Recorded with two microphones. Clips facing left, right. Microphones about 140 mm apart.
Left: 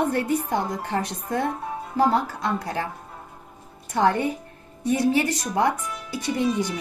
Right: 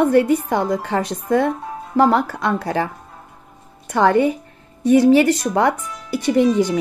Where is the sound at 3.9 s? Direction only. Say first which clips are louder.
Right 6 dB; 90° right; by 6.4 s 75° right (ahead or behind).